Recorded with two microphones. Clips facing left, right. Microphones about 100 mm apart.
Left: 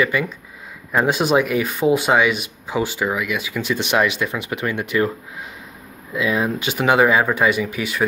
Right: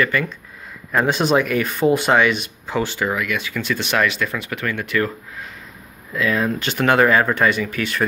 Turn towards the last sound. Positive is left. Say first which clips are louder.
# even
turn(degrees=10)  # may be behind; listen again after turning